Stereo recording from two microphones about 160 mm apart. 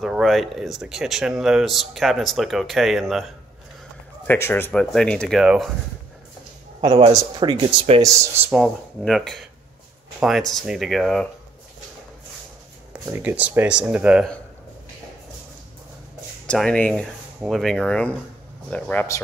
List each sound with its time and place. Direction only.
0.0 s speech: centre (ahead or behind)
4.3 s speech: 15° left (ahead or behind)
7.4 s speech: 30° right (ahead or behind)
8.0 s speech: 20° right (ahead or behind)
8.5 s speech: centre (ahead or behind)
12.9 s speech: 10° right (ahead or behind)
16.4 s speech: 5° left (ahead or behind)